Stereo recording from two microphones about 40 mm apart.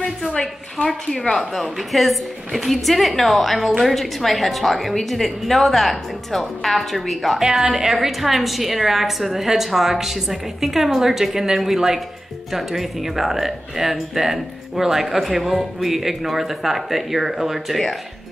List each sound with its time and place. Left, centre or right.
0.8 s a woman's voice: centre
1.3 s a woman's voice: centre